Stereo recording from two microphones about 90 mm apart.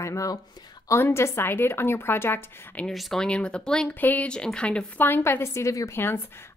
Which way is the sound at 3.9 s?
20° left (ahead or behind).